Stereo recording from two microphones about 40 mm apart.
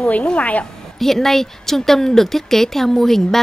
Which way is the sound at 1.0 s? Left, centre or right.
Centre.